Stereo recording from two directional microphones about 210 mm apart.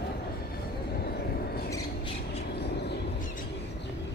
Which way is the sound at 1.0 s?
50° left (ahead or behind).